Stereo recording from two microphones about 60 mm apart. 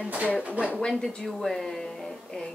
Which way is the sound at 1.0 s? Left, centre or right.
Centre.